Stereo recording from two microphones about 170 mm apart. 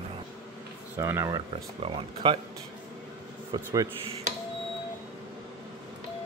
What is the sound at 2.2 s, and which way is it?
Speech, 30° right (ahead or behind).